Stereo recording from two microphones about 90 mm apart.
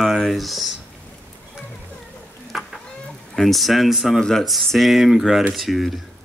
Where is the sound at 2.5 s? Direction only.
Centre (ahead or behind).